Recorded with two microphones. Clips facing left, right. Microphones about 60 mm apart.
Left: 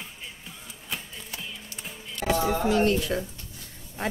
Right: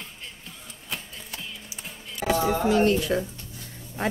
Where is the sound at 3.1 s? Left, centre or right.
Right.